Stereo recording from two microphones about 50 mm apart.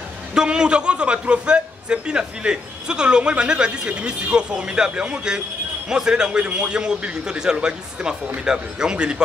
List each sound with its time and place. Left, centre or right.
0.3 s a man's voice: centre